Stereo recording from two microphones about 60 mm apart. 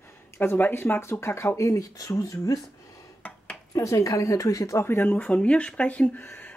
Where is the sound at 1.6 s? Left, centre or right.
Left.